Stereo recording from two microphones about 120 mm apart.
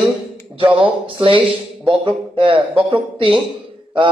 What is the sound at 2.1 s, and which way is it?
A man's voice, 45° right (ahead or behind).